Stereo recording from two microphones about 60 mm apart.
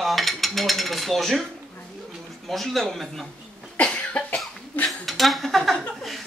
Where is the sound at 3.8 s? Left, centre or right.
Left.